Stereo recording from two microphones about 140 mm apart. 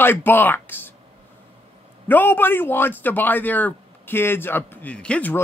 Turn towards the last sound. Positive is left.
turn(degrees=10)  # may be behind; listen again after turning